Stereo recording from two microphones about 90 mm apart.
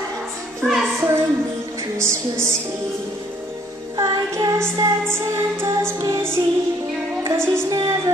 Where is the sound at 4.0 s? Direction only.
40° right (ahead or behind).